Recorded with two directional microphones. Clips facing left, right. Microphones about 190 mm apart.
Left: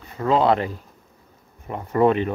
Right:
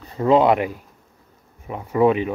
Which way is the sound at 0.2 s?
20° right (ahead or behind).